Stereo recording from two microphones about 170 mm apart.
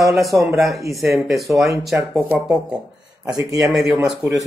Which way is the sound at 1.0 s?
Centre (ahead or behind).